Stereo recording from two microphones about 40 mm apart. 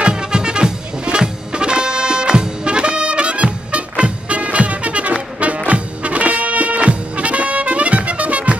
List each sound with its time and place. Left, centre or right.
0.0 s music: right